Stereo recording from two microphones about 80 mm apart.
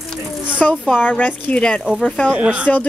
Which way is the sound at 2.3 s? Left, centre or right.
Centre.